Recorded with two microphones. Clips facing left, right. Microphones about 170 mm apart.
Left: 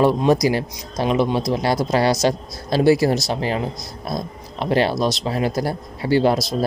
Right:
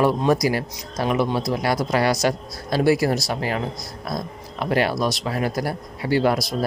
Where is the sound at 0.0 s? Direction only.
20° left (ahead or behind).